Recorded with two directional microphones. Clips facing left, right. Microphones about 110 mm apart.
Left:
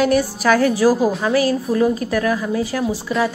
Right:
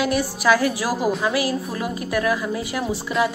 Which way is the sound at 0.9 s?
Centre (ahead or behind).